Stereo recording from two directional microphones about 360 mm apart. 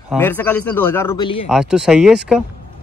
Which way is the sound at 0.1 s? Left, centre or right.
Centre.